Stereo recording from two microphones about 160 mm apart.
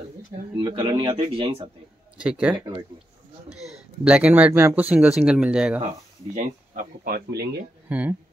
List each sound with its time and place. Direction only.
0.6 s speech: 30° right (ahead or behind)
2.1 s speech: 5° right (ahead or behind)
4.0 s speech: 5° right (ahead or behind)
6.3 s speech: 65° right (ahead or behind); by 7.6 s 85° right
7.9 s speech: 10° right (ahead or behind)